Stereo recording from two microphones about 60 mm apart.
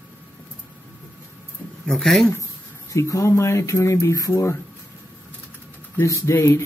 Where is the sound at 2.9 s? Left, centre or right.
Left.